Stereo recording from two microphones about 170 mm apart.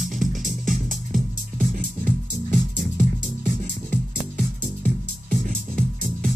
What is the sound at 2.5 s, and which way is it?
Music, 50° right (ahead or behind).